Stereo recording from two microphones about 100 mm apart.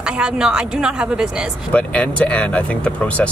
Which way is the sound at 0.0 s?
10° right (ahead or behind).